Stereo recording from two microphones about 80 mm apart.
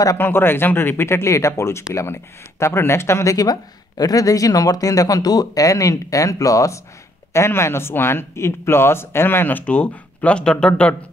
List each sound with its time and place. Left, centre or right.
0.2 s speech: left; by 10.7 s centre